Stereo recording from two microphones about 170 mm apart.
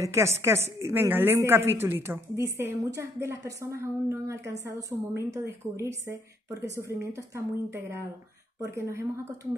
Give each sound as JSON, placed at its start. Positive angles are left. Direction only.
{"t": 0.0, "sound": "speech", "side_deg": -15}